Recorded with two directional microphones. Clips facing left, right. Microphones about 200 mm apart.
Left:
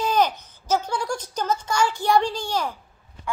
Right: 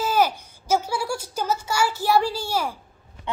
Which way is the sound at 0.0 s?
5° right (ahead or behind).